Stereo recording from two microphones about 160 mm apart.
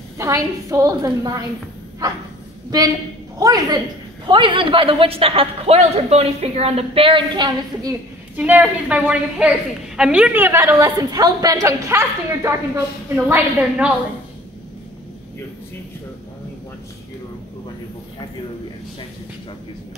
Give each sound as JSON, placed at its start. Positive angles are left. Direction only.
{"t": 0.2, "sound": "a woman's voice", "side_deg": -20}
{"t": 3.3, "sound": "a woman's voice", "side_deg": -20}
{"t": 8.4, "sound": "a woman's voice", "side_deg": -10}